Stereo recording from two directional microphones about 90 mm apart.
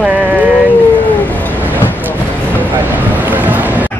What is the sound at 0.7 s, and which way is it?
Howl, 20° left (ahead or behind).